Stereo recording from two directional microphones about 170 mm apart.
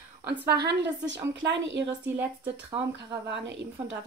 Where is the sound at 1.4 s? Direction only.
90° right.